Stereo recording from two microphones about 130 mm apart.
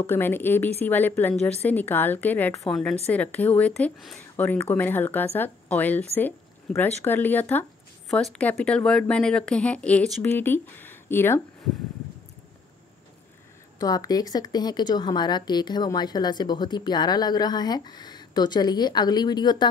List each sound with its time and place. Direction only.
0.0 s speech: 15° left (ahead or behind)
8.1 s speech: 5° left (ahead or behind)
13.7 s a woman's voice: 30° left (ahead or behind)